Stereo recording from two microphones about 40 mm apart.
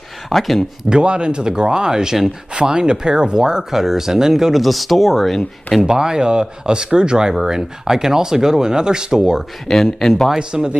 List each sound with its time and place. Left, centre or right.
0.3 s speech: centre
0.8 s speech: right; by 5.4 s centre
5.9 s speech: centre
9.7 s speech: centre
10.5 s speech: centre